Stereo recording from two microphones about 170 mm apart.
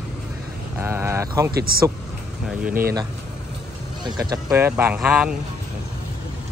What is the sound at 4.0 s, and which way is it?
Speech, 25° right (ahead or behind).